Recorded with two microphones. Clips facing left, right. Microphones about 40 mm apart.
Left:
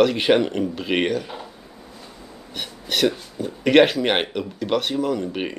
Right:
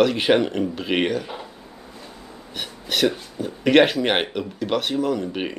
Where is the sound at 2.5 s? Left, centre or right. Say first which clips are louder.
Even; centre.